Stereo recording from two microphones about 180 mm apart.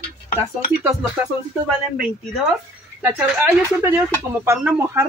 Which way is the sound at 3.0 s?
15° right (ahead or behind).